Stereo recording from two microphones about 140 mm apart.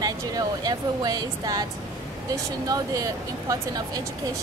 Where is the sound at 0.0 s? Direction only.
25° right (ahead or behind).